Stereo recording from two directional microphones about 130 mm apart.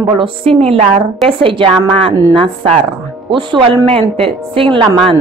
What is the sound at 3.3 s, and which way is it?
A woman's voice, 40° right (ahead or behind).